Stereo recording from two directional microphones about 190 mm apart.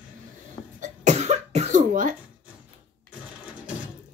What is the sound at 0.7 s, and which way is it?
Cough, 40° right (ahead or behind).